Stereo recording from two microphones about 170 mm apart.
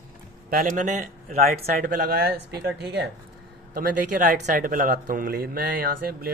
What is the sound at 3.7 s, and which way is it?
Speech, 60° right (ahead or behind).